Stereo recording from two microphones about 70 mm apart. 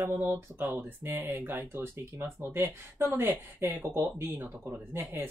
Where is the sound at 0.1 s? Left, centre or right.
Right.